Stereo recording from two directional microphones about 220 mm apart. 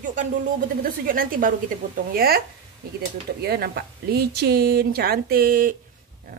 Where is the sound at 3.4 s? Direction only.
45° right (ahead or behind).